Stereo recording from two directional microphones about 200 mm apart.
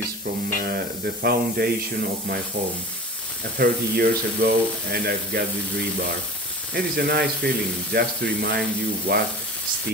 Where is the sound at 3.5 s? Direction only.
50° right (ahead or behind).